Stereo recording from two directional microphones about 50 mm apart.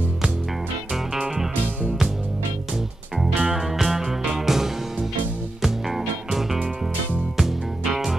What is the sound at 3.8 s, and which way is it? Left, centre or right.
Music, centre.